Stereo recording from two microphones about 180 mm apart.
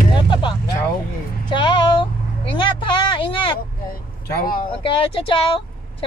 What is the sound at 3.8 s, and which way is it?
Speech, 55° left (ahead or behind).